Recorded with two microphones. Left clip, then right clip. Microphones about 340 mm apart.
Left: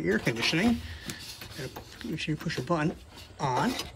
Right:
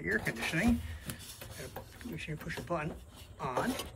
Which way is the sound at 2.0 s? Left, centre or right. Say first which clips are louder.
Left 10 dB; centre.